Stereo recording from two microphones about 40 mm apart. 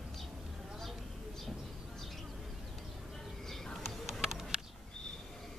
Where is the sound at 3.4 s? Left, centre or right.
Centre.